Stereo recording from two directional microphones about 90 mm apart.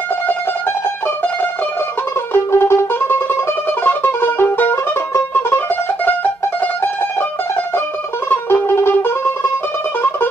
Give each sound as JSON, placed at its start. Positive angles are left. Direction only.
{"t": 1.0, "sound": "music", "side_deg": 20}